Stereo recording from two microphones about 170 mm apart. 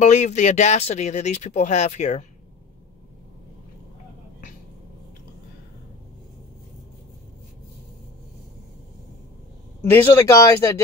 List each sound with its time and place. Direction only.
0.0 s speech: 45° left (ahead or behind)
9.8 s speech: 20° left (ahead or behind)